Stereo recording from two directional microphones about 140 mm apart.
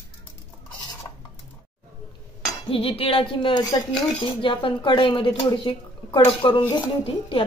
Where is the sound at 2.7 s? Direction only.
40° left (ahead or behind).